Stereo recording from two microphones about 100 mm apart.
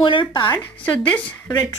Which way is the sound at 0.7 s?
15° left (ahead or behind).